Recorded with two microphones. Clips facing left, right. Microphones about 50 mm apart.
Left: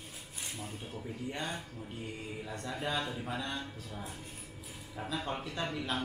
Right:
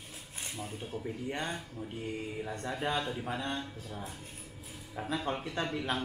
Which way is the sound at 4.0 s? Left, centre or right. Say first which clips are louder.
Right 1 dB; centre.